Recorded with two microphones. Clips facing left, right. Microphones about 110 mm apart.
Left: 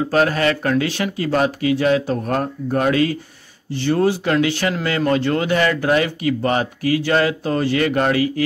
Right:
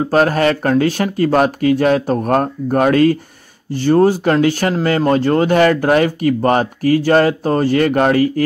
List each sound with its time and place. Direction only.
0.0 s speech: 40° right (ahead or behind)